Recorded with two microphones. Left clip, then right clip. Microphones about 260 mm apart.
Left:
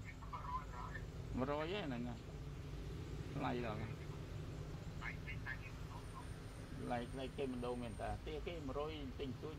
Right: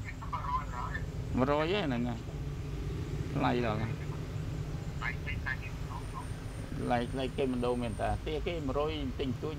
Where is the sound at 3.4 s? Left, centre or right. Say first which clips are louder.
Right 12 dB; right.